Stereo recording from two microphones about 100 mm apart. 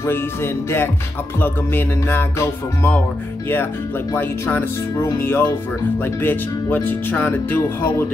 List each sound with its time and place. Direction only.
0.0 s speech: 25° left (ahead or behind)
4.1 s speech: 20° left (ahead or behind)